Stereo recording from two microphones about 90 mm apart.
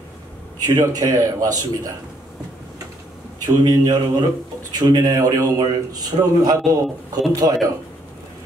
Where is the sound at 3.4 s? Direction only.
45° right (ahead or behind).